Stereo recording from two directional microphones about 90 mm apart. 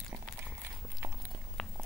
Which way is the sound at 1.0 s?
30° right (ahead or behind).